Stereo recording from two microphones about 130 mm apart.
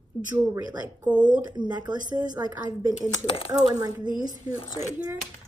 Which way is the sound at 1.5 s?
35° right (ahead or behind).